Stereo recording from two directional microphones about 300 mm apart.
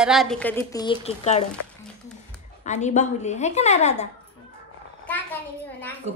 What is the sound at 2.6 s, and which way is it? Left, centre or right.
A woman's voice, left.